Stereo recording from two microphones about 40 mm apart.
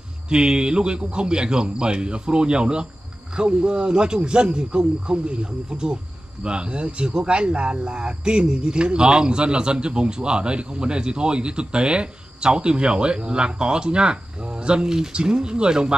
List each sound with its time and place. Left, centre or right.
0.3 s speech: right